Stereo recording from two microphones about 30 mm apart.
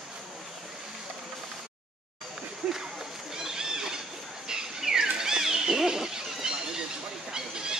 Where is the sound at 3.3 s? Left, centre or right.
Right.